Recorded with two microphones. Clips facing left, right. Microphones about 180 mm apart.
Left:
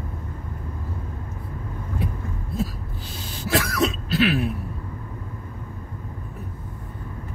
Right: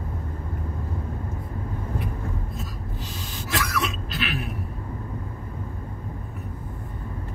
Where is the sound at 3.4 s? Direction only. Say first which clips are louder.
Left 6 dB; 35° left (ahead or behind).